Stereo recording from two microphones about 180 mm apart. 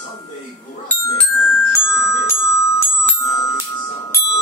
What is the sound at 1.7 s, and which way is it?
Music, 15° left (ahead or behind).